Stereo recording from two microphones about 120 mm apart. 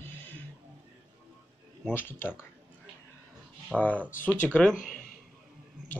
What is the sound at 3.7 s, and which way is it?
Speech, 15° left (ahead or behind).